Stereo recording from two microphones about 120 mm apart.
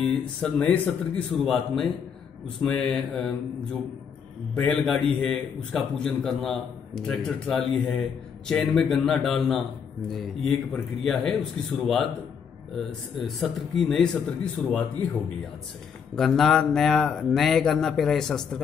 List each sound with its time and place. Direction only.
0.0 s a man's voice: 10° left (ahead or behind)
4.6 s a man's voice: 10° left (ahead or behind)
16.2 s a man's voice: centre (ahead or behind)